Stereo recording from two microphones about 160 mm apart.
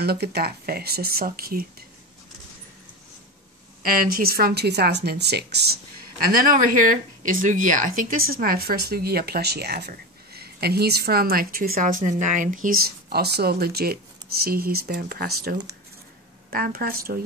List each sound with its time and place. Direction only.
0.0 s speech: 90° right; by 1.9 s 70° right (ahead or behind)
3.8 s speech: 65° right (ahead or behind); by 5.8 s 90° right
6.3 s a woman's voice: 60° right (ahead or behind)